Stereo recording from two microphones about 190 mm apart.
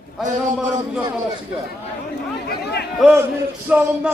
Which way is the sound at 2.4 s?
60° left (ahead or behind).